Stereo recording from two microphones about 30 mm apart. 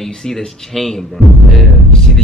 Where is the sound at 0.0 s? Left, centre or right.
Centre.